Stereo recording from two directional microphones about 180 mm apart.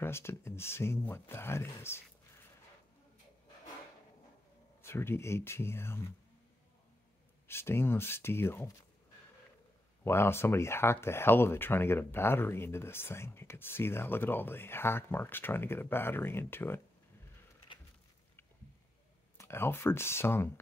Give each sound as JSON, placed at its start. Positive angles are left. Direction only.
{"t": 0.0, "sound": "speech", "side_deg": 15}
{"t": 4.8, "sound": "speech", "side_deg": 15}
{"t": 7.4, "sound": "speech", "side_deg": 15}
{"t": 10.0, "sound": "speech", "side_deg": 15}
{"t": 17.7, "sound": "a sound", "side_deg": 25}
{"t": 19.3, "sound": "speech", "side_deg": 15}